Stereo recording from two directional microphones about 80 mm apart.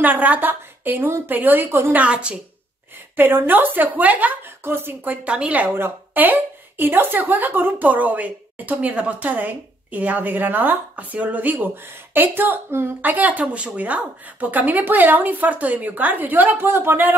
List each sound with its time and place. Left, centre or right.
0.0 s speech: right
2.0 s a woman's voice: centre
3.2 s speech: right